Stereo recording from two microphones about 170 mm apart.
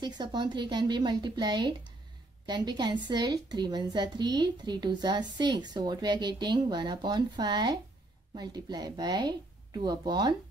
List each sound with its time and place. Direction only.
0.0 s a woman's voice: 25° right (ahead or behind)